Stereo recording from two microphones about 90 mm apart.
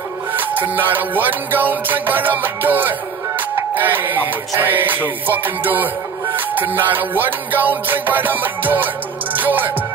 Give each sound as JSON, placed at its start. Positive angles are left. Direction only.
{"t": 0.3, "sound": "music", "side_deg": -20}